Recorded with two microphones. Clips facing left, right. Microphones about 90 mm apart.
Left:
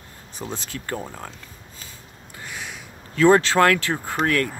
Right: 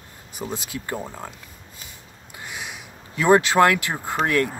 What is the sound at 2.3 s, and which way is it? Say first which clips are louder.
Speech: even; 15° right (ahead or behind).